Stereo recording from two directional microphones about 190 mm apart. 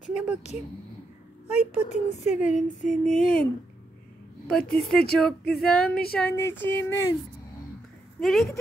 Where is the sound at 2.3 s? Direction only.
5° right (ahead or behind).